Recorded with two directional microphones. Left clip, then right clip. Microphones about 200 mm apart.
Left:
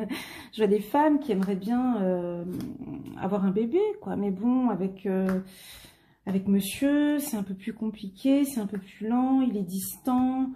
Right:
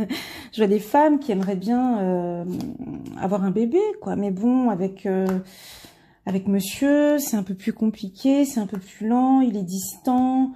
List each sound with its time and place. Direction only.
0.0 s speech: 40° right (ahead or behind)
6.2 s speech: 35° right (ahead or behind)